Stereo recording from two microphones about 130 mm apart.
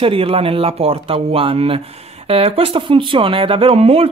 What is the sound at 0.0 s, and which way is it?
Speech, 45° right (ahead or behind).